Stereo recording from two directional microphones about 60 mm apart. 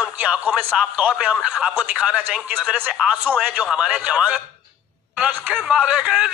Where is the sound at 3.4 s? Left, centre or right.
Right.